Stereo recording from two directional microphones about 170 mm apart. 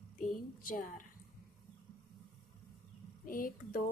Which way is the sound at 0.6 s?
55° left (ahead or behind).